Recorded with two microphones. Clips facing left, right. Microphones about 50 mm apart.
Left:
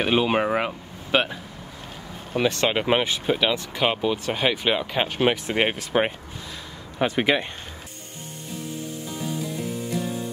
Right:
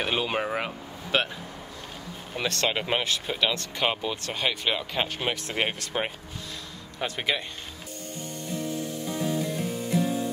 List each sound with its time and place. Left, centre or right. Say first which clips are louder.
0.0 s speech: left 6 dB; centre
2.3 s speech: left 5 dB; centre
9.0 s music: right 2 dB; centre